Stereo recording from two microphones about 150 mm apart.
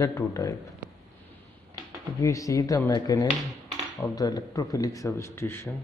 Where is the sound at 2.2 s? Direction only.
20° left (ahead or behind).